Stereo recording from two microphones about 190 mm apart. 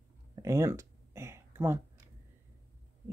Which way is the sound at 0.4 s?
15° right (ahead or behind).